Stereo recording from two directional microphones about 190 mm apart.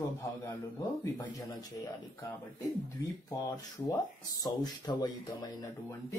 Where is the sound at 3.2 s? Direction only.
15° left (ahead or behind).